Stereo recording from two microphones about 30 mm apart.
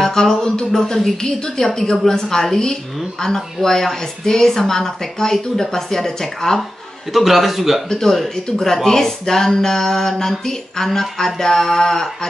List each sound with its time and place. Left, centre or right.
0.0 s a sound: left
1.2 s speech: centre
7.2 s a man's voice: centre
8.0 s speech: centre